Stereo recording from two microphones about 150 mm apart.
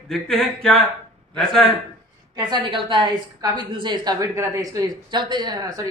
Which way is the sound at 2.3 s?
30° right (ahead or behind).